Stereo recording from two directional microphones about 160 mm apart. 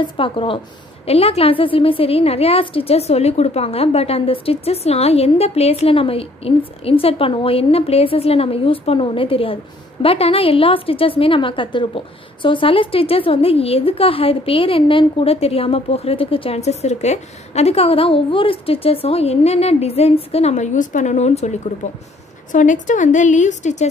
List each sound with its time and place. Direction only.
0.2 s a woman's voice: 35° left (ahead or behind)